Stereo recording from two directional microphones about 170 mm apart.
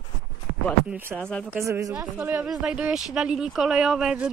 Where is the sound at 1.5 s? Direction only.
15° right (ahead or behind).